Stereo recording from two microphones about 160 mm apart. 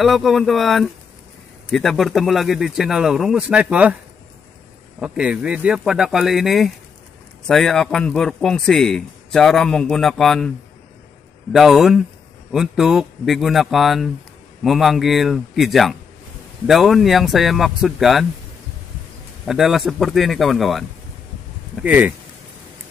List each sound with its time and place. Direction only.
0.0 s a man's voice: centre (ahead or behind)
5.0 s a man's voice: 5° right (ahead or behind)
11.5 s a man's voice: centre (ahead or behind)
19.4 s a man's voice: centre (ahead or behind)
21.8 s speech: 10° right (ahead or behind)